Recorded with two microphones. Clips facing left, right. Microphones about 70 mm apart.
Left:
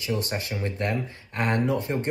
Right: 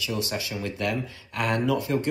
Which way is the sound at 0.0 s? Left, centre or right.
Left.